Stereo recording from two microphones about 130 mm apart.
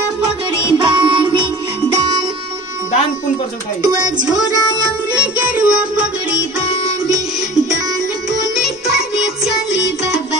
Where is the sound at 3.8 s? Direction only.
30° right (ahead or behind).